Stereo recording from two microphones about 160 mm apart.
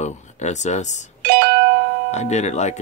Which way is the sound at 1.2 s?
70° right (ahead or behind).